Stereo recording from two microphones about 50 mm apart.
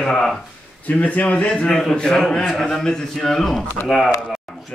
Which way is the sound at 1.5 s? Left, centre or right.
Centre.